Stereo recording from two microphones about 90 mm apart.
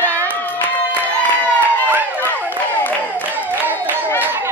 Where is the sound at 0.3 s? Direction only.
20° left (ahead or behind).